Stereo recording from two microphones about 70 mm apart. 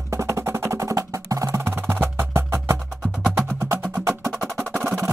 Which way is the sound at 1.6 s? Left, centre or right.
Right.